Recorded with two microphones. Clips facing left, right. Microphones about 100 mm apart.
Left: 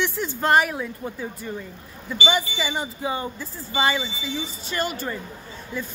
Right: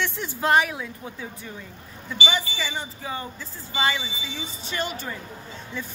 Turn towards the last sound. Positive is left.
turn(degrees=5)  # may be behind; listen again after turning